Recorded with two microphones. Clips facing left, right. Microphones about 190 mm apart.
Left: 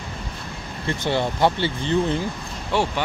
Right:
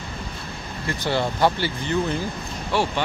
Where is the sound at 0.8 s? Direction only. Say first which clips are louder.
Left 1 dB; 20° left (ahead or behind).